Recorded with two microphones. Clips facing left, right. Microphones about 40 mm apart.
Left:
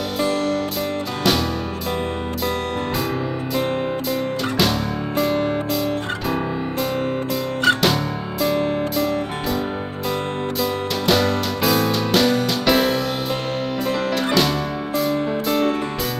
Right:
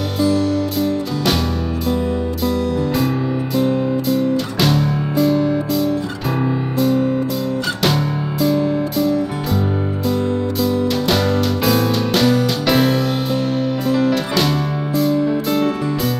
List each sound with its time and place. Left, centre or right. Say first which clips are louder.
0.2 s music: right 5 dB; left
4.6 s music: right 3 dB; centre
7.8 s music: right 2 dB; centre
10.6 s music: right 5 dB; centre
14.1 s music: right 1 dB; centre